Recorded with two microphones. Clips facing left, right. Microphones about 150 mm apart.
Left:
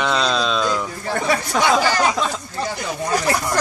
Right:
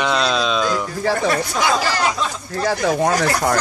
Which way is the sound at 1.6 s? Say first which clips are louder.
Left 4 dB; 65° left (ahead or behind).